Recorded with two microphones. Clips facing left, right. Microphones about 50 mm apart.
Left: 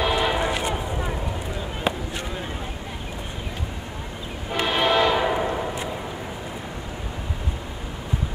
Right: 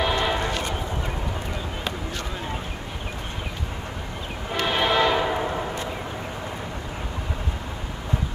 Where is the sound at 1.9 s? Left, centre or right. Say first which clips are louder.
Left 7 dB; left.